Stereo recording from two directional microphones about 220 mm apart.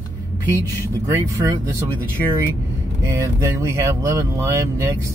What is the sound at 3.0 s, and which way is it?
Speech, 15° right (ahead or behind).